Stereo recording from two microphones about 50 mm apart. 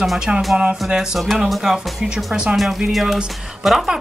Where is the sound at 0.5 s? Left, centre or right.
Centre.